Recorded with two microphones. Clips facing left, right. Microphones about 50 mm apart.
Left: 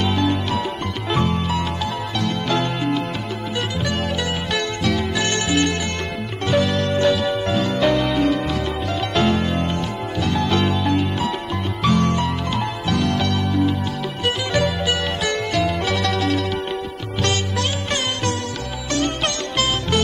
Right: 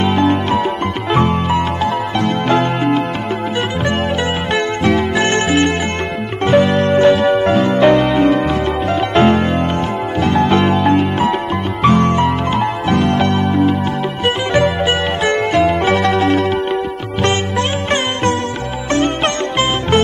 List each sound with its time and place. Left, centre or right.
0.0 s music: right
4.6 s zither: right
6.4 s music: right